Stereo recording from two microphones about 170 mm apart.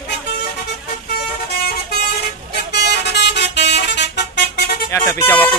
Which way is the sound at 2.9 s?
85° left.